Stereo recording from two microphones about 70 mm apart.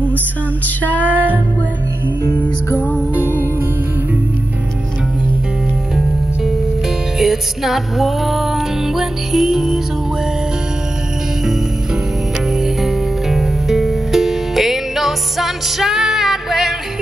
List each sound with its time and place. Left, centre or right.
0.8 s music: left
7.2 s music: centre
12.4 s music: centre